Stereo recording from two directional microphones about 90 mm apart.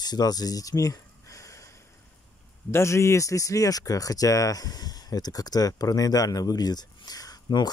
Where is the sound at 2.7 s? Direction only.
30° left (ahead or behind).